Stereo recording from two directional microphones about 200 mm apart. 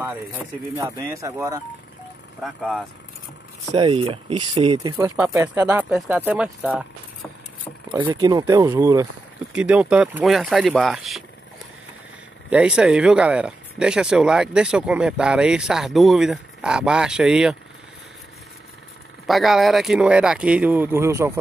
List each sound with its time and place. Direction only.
0.7 s speech: 15° right (ahead or behind)
2.4 s speech: centre (ahead or behind)
3.7 s speech: 25° right (ahead or behind); by 7.2 s 5° right (ahead or behind)
8.0 s speech: 20° right (ahead or behind); by 11.2 s centre (ahead or behind)
12.4 s speech: 5° right (ahead or behind)
19.2 s speech: centre (ahead or behind)